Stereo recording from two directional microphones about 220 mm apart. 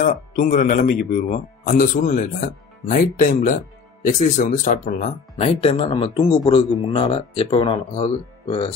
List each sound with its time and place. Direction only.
0.0 s speech: 35° left (ahead or behind)